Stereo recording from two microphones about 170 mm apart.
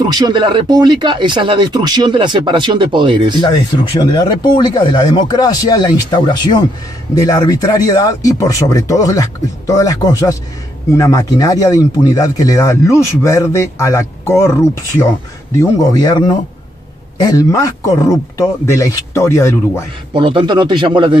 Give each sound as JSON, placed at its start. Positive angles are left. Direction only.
{"t": 0.0, "sound": "speech", "side_deg": -25}
{"t": 3.3, "sound": "speech", "side_deg": 25}
{"t": 15.5, "sound": "speech", "side_deg": 20}
{"t": 20.1, "sound": "speech", "side_deg": -30}